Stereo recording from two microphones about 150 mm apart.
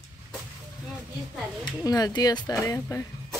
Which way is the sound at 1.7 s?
25° left (ahead or behind).